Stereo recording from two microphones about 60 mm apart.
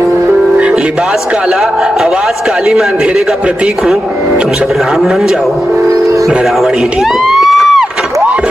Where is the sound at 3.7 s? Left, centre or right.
Centre.